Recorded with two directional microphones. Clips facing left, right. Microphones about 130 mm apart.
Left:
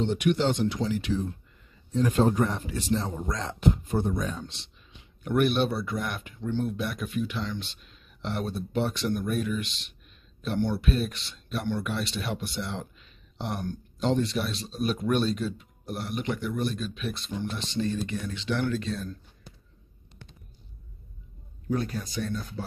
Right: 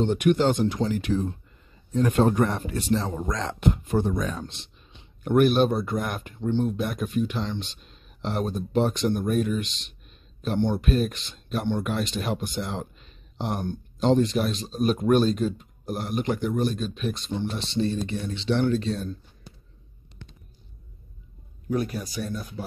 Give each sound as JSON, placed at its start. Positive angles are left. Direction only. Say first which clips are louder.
{"t": 0.0, "sound": "speech", "louder": "right 4 dB", "side_deg": -45}
{"t": 2.0, "sound": "speech", "louder": "right 2 dB", "side_deg": -60}
{"t": 5.2, "sound": "speech", "louder": "right 5 dB", "side_deg": -45}
{"t": 22.2, "sound": "speech", "louder": "left 2 dB", "side_deg": -15}